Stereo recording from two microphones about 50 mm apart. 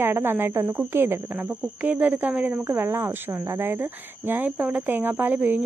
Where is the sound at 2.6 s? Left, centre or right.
Right.